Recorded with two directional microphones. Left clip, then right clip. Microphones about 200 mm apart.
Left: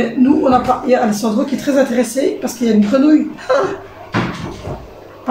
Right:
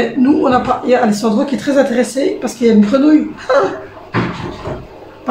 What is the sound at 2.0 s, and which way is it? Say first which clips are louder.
Speech: right 1 dB; 10° right (ahead or behind).